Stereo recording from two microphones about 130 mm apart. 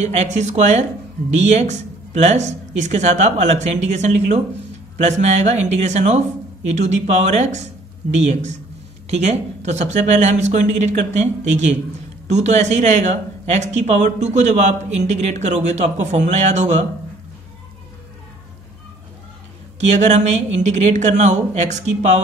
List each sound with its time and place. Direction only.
0.0 s speech: 60° right (ahead or behind)
19.8 s speech: 60° right (ahead or behind)